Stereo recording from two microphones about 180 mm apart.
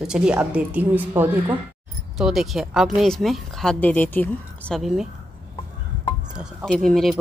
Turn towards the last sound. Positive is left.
turn(degrees=0)  # may be behind; listen again after turning